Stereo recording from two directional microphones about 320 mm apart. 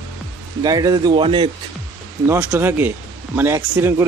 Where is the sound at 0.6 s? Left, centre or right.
Centre.